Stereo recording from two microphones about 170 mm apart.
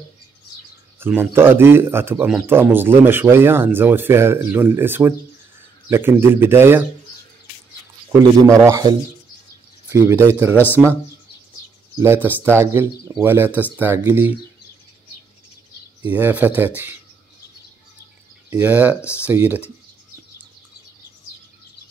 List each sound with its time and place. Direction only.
0.9 s speech: 10° right (ahead or behind)
8.5 s speech: 20° right (ahead or behind)
12.0 s speech: 10° right (ahead or behind)
16.1 s speech: 10° right (ahead or behind)
18.6 s speech: 10° right (ahead or behind)
18.9 s speech: 15° left (ahead or behind)
19.2 s speech: 10° right (ahead or behind)